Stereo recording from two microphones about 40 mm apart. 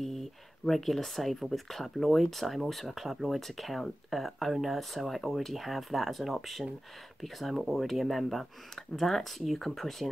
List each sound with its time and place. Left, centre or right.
0.0 s speech: centre